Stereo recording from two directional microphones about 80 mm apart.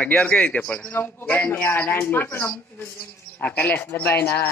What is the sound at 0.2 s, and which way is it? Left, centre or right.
Speech, centre.